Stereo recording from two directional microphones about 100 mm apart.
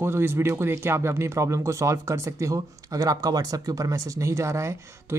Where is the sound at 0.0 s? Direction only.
25° right (ahead or behind).